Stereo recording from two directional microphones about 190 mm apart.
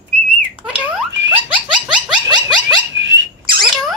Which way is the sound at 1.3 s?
10° right (ahead or behind).